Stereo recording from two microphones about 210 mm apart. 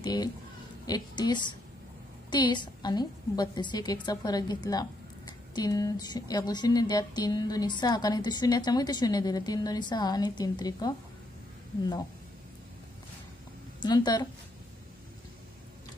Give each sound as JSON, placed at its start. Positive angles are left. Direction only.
{"t": 0.0, "sound": "a woman's voice", "side_deg": 20}
{"t": 13.7, "sound": "a woman's voice", "side_deg": 20}